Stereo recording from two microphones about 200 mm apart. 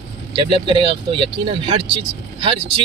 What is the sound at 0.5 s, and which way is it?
Speech, 25° right (ahead or behind).